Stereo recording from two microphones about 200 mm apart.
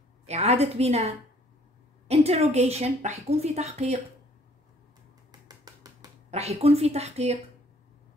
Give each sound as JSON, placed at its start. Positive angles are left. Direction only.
{"t": 0.3, "sound": "a woman's voice", "side_deg": -35}
{"t": 5.3, "sound": "a sound", "side_deg": -20}
{"t": 6.3, "sound": "a woman's voice", "side_deg": -30}